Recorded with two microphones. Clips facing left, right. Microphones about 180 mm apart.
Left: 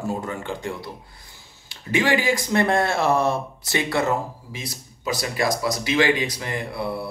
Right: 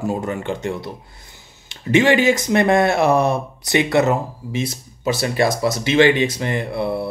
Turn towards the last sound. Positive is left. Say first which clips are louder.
# right 6 dB
turn(degrees=-25)  # may be behind; listen again after turning